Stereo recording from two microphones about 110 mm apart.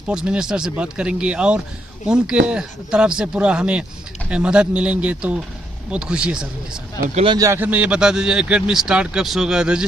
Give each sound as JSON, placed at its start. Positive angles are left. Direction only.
{"t": 0.1, "sound": "a man's voice", "side_deg": -5}
{"t": 7.3, "sound": "a man's voice", "side_deg": -30}
{"t": 7.6, "sound": "a man's voice", "side_deg": -15}